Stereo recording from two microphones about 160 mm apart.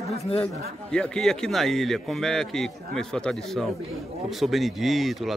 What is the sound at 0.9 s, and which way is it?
A man's voice, 5° left (ahead or behind).